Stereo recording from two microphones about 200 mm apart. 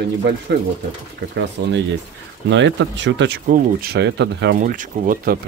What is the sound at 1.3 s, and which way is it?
Speech, 65° right (ahead or behind).